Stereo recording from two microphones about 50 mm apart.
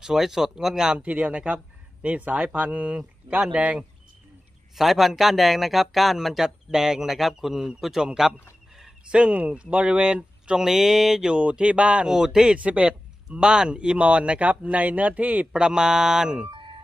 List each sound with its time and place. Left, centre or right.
0.0 s speech: centre
0.9 s speech: right
4.7 s speech: centre
9.1 s speech: right
10.7 s speech: centre
11.2 s speech: right
12.1 s speech: centre
12.5 s speech: right
13.4 s speech: centre; by 15.4 s right
15.5 s speech: centre